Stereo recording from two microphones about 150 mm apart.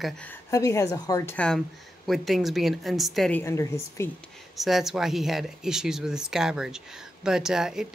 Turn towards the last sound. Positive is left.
turn(degrees=-5)  # may be behind; listen again after turning